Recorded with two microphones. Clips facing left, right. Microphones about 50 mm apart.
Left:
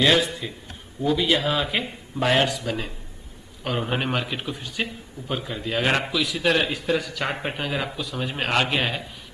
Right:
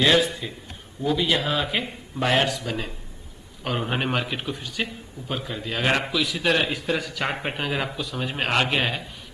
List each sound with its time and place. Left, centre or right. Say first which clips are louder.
0.0 s a man's voice: even; centre